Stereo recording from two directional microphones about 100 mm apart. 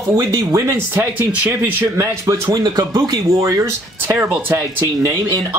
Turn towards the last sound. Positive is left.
turn(degrees=-25)  # may be behind; listen again after turning